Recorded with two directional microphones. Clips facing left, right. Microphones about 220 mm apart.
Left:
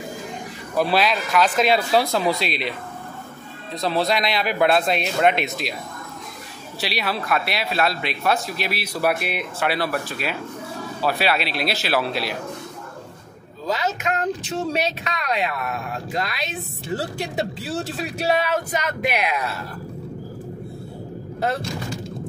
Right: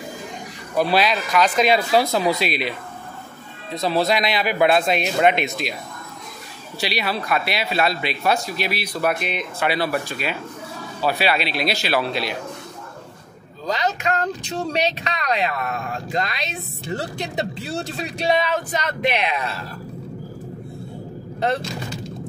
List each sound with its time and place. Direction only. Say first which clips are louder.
0.7 s speech: right 1 dB; centre (ahead or behind)
3.7 s speech: right 2 dB; centre (ahead or behind)
6.8 s speech: right 1 dB; centre (ahead or behind)
13.7 s speech: right 1 dB; 5° left (ahead or behind)